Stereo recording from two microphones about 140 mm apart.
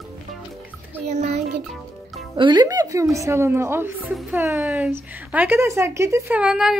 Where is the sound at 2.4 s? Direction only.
30° right (ahead or behind).